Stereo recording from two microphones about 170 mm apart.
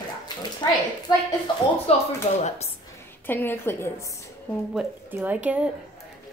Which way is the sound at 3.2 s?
10° left (ahead or behind).